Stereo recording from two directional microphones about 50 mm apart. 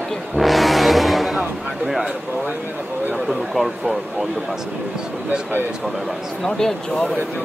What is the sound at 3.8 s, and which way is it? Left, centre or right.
Speech, right.